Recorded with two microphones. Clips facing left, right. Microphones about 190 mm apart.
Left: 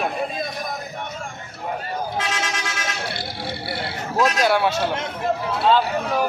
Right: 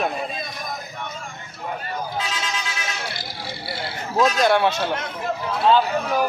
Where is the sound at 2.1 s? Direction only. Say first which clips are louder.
Left 2 dB; 80° left.